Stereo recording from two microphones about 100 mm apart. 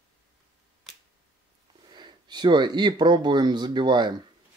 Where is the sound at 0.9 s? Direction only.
Centre (ahead or behind).